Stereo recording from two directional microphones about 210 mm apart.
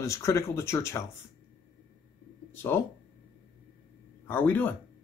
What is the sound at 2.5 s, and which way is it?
Speech, 10° left (ahead or behind).